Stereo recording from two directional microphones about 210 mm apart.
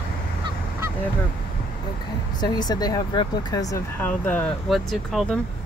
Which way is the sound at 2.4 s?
20° left (ahead or behind).